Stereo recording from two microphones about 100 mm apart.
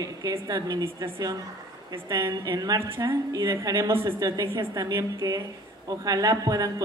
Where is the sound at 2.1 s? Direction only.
50° right (ahead or behind).